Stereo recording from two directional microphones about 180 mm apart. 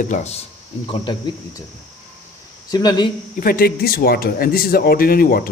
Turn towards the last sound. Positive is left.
turn(degrees=55)  # may be behind; listen again after turning